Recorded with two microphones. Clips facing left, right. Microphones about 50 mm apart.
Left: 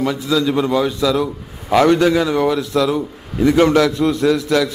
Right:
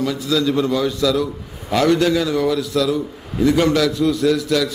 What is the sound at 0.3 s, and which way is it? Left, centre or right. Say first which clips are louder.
A man's voice: left 1 dB; centre.